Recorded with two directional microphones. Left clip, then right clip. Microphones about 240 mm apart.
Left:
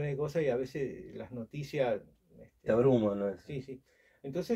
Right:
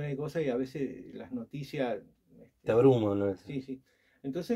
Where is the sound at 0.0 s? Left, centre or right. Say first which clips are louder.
Left 1 dB; centre.